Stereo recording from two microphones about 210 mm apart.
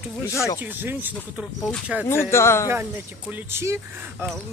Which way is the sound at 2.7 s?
10° right (ahead or behind).